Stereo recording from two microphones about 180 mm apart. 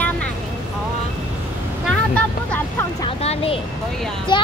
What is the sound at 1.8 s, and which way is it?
Speech, 5° left (ahead or behind).